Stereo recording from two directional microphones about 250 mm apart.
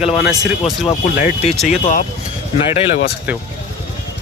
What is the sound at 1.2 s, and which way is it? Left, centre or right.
Speech, left.